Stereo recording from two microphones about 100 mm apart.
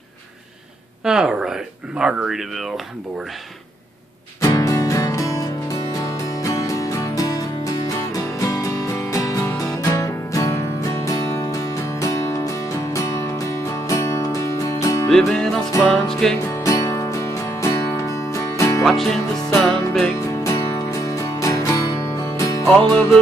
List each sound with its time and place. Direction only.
1.0 s speech: 5° right (ahead or behind)
4.4 s music: 35° left (ahead or behind)
15.0 s music: 5° left (ahead or behind)
15.9 s speech: 5° left (ahead or behind)
16.4 s music: 25° left (ahead or behind)
18.8 s music: centre (ahead or behind)
20.2 s music: 30° left (ahead or behind)